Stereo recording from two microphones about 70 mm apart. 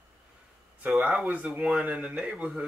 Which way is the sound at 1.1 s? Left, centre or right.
Centre.